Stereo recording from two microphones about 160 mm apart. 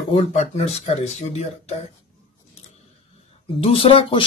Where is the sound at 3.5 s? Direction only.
35° left (ahead or behind).